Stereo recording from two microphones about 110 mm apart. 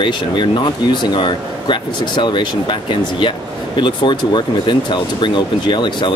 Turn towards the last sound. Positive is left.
turn(degrees=45)  # may be behind; listen again after turning